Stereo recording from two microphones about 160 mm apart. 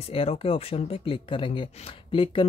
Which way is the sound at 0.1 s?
35° left (ahead or behind).